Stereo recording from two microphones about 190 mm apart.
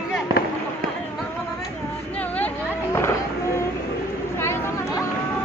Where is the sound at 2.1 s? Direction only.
10° left (ahead or behind).